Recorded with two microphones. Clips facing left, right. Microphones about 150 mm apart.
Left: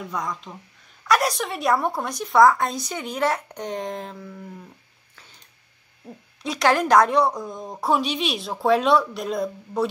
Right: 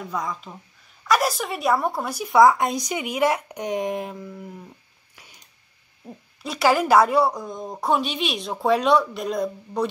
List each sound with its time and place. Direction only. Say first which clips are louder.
0.1 s a woman's voice: right 2 dB; centre (ahead or behind)
2.4 s speech: even; 20° right (ahead or behind)
5.1 s a sound: right 1 dB; 15° right (ahead or behind)
6.4 s a woman's voice: even; 5° right (ahead or behind)